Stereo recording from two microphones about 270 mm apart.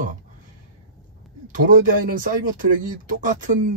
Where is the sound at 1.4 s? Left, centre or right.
Right.